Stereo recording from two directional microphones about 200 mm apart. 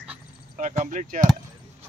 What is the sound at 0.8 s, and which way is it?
Speech, 40° right (ahead or behind).